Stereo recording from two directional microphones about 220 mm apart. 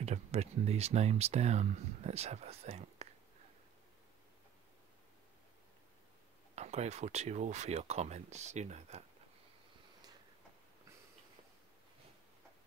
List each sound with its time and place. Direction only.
0.0 s speech: 30° right (ahead or behind)
6.5 s speech: 30° right (ahead or behind)